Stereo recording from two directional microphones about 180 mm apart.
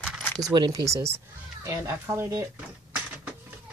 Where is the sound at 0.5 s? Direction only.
20° right (ahead or behind).